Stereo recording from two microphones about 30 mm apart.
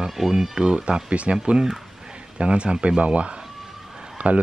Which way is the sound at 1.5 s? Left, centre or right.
Right.